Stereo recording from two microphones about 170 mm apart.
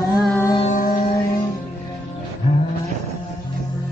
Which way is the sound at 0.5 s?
40° left (ahead or behind).